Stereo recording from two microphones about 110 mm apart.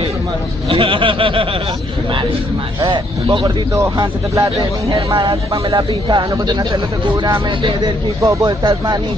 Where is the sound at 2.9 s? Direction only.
45° right (ahead or behind).